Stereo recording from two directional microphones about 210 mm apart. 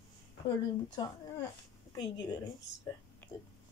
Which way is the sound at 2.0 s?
20° left (ahead or behind).